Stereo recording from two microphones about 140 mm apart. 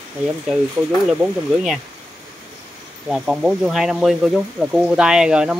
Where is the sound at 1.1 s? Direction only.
5° right (ahead or behind).